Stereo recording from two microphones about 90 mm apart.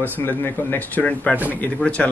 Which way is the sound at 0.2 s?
25° left (ahead or behind).